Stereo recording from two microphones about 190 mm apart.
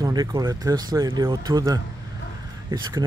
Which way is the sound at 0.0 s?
20° right (ahead or behind).